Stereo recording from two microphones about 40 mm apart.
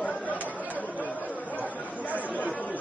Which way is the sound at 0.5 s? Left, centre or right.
Right.